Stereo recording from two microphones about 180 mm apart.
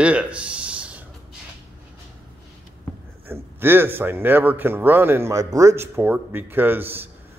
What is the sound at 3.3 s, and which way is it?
A man's voice, 10° right (ahead or behind).